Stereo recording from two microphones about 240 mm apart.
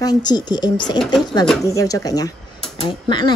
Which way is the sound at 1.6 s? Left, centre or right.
Centre.